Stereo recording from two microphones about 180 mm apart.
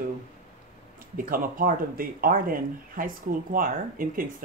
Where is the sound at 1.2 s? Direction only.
50° right (ahead or behind).